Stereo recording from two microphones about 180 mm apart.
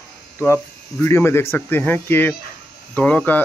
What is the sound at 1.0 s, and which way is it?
Speech, 15° left (ahead or behind).